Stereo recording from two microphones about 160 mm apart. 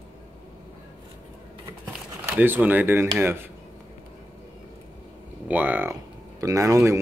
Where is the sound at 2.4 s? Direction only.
10° right (ahead or behind).